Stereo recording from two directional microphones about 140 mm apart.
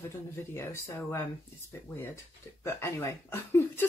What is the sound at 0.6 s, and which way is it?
Speech, 20° left (ahead or behind).